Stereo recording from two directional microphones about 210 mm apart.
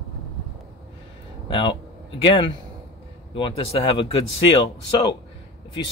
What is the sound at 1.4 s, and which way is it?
Speech, 25° left (ahead or behind).